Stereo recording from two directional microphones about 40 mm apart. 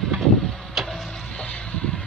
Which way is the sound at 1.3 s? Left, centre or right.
Left.